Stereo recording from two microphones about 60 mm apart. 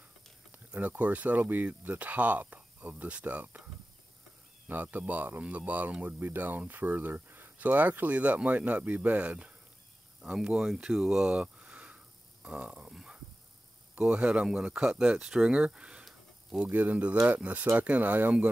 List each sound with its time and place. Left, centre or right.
0.7 s speech: right
4.6 s speech: right
10.5 s speech: centre
12.4 s a sound: centre
14.1 s speech: centre
16.6 s speech: right